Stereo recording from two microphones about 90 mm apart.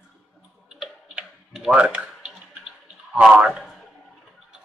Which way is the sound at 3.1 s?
10° right (ahead or behind).